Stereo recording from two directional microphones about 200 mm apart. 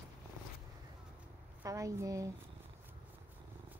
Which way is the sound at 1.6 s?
15° right (ahead or behind).